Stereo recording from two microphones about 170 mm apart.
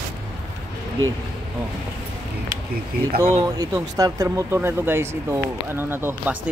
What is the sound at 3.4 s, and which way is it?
Speech, 20° right (ahead or behind).